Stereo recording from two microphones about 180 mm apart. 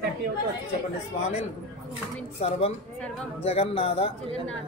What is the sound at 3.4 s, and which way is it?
Speech, 35° left (ahead or behind).